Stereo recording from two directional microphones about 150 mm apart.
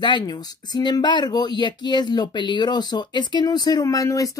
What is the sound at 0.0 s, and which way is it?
Speech, 30° left (ahead or behind).